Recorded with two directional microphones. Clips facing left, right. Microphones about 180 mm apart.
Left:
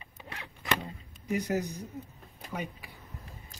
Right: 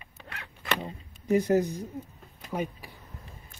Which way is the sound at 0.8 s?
35° right (ahead or behind).